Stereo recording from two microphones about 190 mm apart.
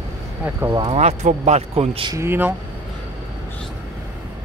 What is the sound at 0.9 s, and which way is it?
Speech, 35° right (ahead or behind).